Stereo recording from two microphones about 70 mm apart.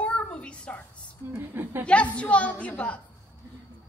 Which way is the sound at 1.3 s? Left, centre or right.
Right.